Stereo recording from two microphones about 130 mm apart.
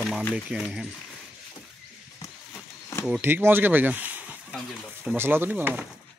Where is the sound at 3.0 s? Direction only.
10° right (ahead or behind).